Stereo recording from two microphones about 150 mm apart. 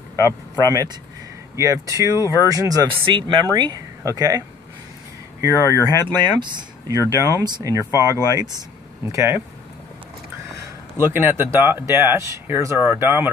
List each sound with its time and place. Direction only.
0.6 s speech: 25° right (ahead or behind)
11.0 s speech: 15° right (ahead or behind)